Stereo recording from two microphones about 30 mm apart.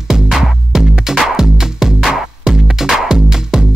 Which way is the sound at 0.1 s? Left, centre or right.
Centre.